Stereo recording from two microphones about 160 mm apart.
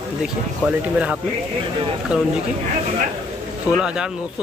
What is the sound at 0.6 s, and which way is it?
Speech, 5° right (ahead or behind).